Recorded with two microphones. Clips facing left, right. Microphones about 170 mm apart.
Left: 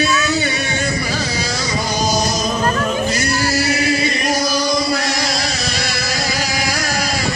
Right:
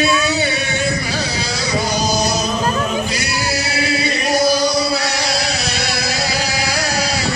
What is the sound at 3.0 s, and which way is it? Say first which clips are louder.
Male singing: left 4 dB; 45° left (ahead or behind).